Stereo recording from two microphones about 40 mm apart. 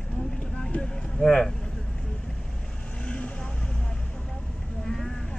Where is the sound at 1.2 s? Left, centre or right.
Centre.